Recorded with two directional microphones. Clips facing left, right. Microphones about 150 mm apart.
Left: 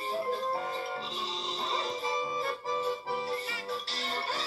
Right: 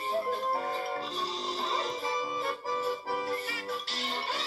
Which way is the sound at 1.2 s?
20° left (ahead or behind).